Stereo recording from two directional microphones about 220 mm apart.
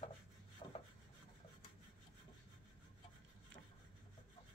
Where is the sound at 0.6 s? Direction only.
25° left (ahead or behind).